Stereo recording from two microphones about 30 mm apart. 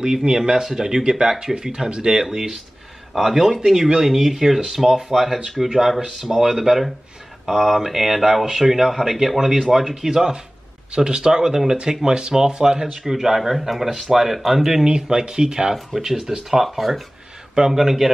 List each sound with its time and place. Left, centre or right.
0.0 s speech: right
2.3 s speech: centre
3.6 s speech: centre
10.0 s speech: centre
12.9 s speech: centre
14.9 s speech: right
15.7 s speech: centre
16.6 s speech: centre
17.6 s speech: centre